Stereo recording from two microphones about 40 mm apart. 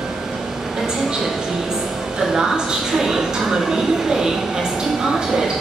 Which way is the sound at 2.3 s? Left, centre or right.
Centre.